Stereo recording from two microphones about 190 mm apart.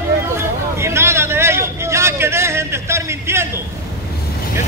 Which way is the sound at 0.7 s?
15° right (ahead or behind).